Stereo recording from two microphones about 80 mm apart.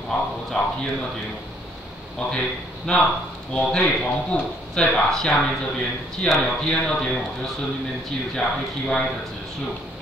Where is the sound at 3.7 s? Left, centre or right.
Centre.